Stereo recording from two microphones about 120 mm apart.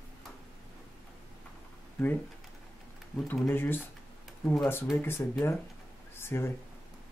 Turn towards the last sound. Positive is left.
turn(degrees=20)  # may be behind; listen again after turning